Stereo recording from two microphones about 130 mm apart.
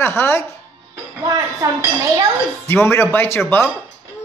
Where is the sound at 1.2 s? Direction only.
25° right (ahead or behind).